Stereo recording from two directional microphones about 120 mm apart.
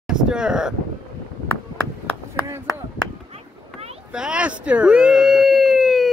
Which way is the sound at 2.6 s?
30° left (ahead or behind).